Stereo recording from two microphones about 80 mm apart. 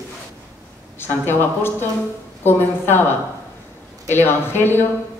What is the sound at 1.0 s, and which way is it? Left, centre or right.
Speech, left.